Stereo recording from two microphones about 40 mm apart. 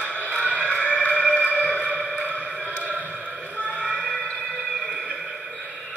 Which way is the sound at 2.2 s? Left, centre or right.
Right.